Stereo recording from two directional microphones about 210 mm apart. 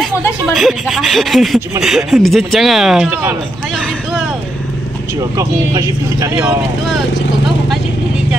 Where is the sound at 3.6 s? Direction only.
Centre (ahead or behind).